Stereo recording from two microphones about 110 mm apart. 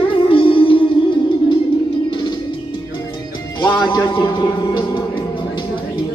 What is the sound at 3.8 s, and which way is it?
A man's voice, 45° left (ahead or behind).